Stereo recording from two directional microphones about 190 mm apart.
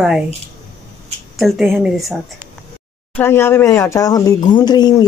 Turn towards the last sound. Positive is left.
turn(degrees=20)  # may be behind; listen again after turning